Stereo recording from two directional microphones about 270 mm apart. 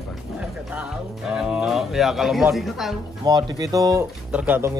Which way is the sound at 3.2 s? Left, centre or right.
Centre.